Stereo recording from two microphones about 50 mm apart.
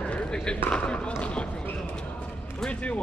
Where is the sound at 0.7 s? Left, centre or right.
Left.